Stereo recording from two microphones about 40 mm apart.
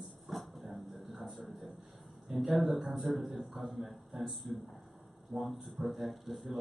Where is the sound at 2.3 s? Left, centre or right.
Centre.